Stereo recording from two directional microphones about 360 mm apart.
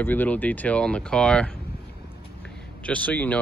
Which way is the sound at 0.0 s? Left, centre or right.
Centre.